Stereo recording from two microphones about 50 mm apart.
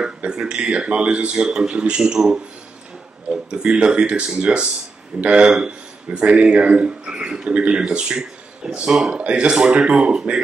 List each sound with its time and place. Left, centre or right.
0.0 s speech: centre
9.2 s speech: right